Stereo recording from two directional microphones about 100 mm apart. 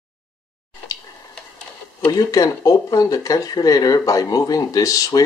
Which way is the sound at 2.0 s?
45° left (ahead or behind).